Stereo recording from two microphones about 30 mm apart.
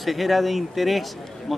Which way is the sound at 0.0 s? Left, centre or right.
Centre.